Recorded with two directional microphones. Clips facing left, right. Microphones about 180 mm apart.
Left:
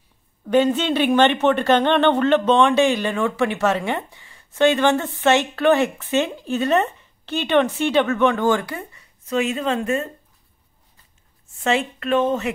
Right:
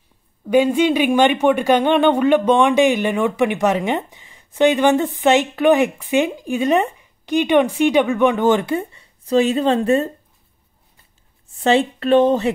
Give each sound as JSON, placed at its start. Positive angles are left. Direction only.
{"t": 0.5, "sound": "a woman's voice", "side_deg": -10}
{"t": 11.6, "sound": "speech", "side_deg": -30}